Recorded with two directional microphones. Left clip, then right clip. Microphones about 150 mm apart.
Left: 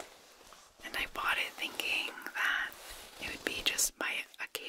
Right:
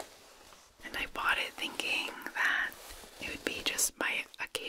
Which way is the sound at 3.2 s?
5° right (ahead or behind).